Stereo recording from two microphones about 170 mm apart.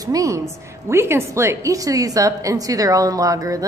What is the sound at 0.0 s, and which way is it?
A woman's voice, 20° right (ahead or behind).